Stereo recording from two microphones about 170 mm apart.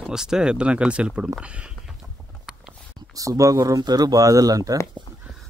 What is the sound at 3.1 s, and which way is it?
Speech, 20° right (ahead or behind).